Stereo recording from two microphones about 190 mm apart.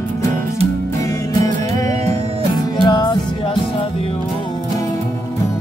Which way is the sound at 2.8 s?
20° left (ahead or behind).